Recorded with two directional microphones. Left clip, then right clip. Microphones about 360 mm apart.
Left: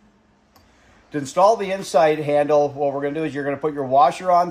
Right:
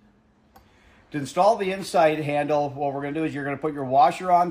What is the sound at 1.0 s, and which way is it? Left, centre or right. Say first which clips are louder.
A man's voice: left 4 dB; centre.